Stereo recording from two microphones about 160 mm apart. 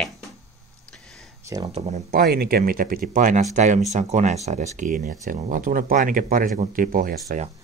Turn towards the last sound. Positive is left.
turn(degrees=-60)  # may be behind; listen again after turning